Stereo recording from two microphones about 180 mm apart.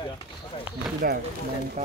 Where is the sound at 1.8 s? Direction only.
40° right (ahead or behind).